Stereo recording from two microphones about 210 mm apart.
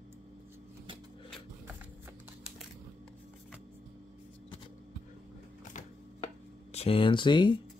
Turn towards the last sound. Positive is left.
turn(degrees=20)  # may be behind; listen again after turning